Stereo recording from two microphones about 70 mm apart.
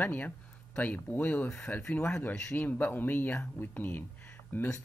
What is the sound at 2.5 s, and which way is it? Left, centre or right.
Speech, left.